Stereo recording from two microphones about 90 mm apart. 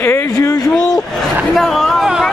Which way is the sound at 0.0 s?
30° left (ahead or behind).